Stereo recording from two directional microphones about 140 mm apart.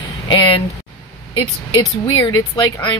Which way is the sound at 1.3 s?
30° left (ahead or behind).